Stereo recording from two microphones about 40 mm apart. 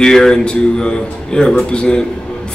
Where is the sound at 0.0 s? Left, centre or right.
Centre.